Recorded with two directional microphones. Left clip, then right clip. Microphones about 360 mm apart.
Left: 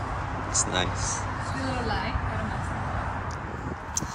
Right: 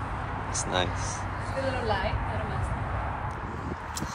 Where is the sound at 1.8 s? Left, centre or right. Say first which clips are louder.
Right 2 dB; centre.